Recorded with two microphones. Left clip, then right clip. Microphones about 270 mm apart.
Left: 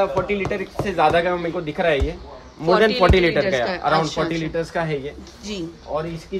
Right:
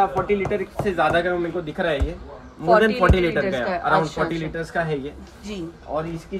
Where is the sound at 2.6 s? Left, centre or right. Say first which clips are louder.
Left 1 dB; centre.